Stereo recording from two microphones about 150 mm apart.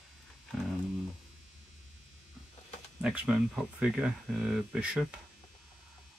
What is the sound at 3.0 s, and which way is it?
Speech, 5° right (ahead or behind).